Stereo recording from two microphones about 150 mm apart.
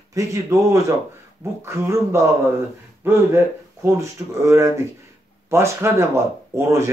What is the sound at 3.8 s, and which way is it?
Speech, 20° right (ahead or behind).